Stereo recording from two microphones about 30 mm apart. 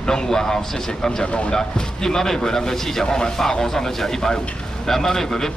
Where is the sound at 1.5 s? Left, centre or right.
Left.